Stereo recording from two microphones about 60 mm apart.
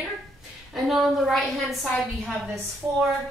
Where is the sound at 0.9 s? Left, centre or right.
Centre.